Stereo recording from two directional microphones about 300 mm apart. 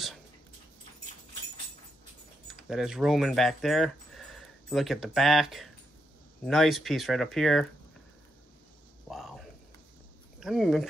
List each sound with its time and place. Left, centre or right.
2.4 s speech: centre
9.0 s a sound: centre
10.4 s speech: centre